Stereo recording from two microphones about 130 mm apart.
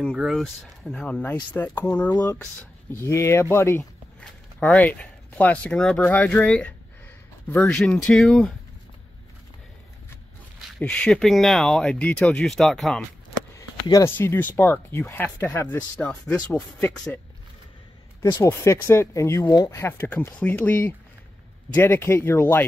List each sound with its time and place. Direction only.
0.0 s speech: 5° right (ahead or behind)
0.4 s speech: 5° left (ahead or behind)
4.2 s speech: 10° left (ahead or behind)
10.8 s speech: 10° left (ahead or behind)
13.6 s a sound: 25° left (ahead or behind)
14.1 s speech: 15° left (ahead or behind)
18.2 s speech: 25° left (ahead or behind)